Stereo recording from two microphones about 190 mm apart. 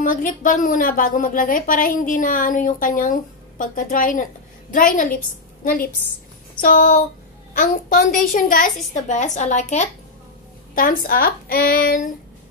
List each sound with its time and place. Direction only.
0.0 s a woman's voice: 45° left (ahead or behind)